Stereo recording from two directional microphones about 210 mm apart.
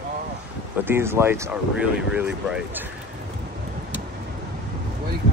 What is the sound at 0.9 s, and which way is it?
Speech, 10° right (ahead or behind).